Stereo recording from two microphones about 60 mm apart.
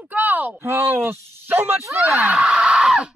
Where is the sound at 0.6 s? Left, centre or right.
Right.